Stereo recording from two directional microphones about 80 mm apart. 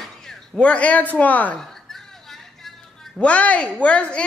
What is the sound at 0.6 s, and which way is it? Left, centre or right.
Speech, centre.